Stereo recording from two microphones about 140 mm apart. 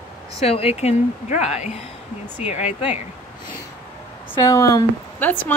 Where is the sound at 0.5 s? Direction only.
45° left (ahead or behind).